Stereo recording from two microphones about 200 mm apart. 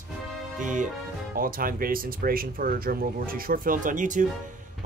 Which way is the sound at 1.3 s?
45° right (ahead or behind).